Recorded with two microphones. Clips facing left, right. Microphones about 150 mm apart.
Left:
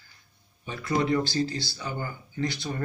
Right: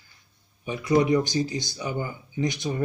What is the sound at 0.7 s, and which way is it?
Speech, 15° right (ahead or behind).